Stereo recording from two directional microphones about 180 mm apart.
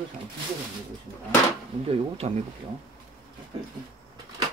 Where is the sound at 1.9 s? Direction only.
35° right (ahead or behind).